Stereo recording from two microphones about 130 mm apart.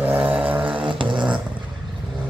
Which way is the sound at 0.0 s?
10° right (ahead or behind).